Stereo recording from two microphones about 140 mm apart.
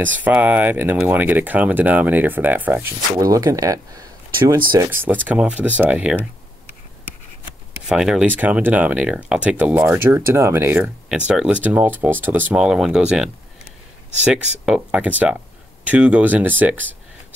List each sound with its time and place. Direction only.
0.0 s speech: 10° right (ahead or behind)
3.2 s speech: 25° right (ahead or behind); by 6.1 s 10° right (ahead or behind)
7.9 s speech: 5° right (ahead or behind)